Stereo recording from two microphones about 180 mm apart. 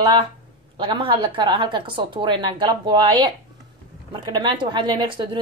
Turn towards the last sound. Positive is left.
turn(degrees=-25)  # may be behind; listen again after turning